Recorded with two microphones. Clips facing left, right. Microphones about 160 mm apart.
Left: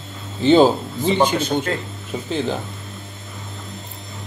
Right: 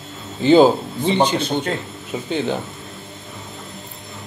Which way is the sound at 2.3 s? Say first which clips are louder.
Right 1 dB; centre (ahead or behind).